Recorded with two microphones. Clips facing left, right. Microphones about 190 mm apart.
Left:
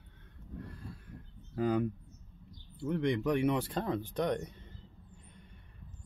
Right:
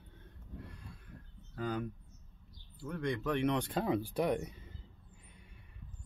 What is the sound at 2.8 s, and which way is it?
Speech, 20° left (ahead or behind).